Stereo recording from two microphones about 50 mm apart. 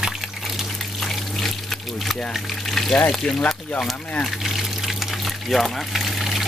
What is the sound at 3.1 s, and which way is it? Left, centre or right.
Speech, centre.